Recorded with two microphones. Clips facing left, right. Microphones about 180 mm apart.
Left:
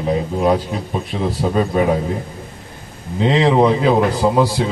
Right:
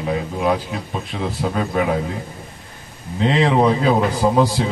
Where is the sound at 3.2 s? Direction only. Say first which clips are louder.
Left 2 dB; 15° left (ahead or behind).